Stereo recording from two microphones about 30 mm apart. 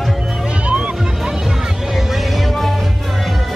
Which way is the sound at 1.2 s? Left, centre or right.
Centre.